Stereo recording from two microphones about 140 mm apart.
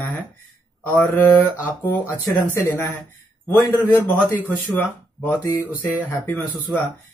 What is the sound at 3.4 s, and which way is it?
Speech, 20° left (ahead or behind).